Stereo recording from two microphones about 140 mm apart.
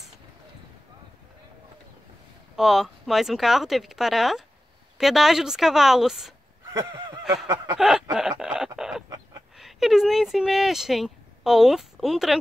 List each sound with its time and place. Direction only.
2.5 s speech: centre (ahead or behind)
6.7 s a sound: 30° right (ahead or behind)
7.8 s snicker: 5° right (ahead or behind)
9.6 s speech: centre (ahead or behind)